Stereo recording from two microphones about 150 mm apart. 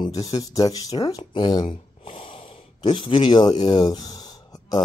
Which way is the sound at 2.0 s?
35° left (ahead or behind).